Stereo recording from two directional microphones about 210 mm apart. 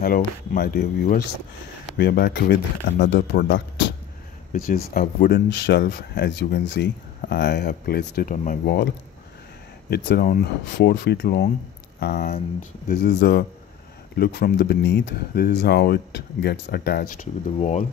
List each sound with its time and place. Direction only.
0.0 s speech: 45° left (ahead or behind)
4.5 s speech: 40° left (ahead or behind)
9.8 s speech: 50° left (ahead or behind)
17.6 s speech: 30° left (ahead or behind)